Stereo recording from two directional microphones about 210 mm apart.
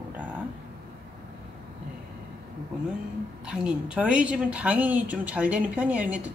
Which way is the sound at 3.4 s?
5° right (ahead or behind).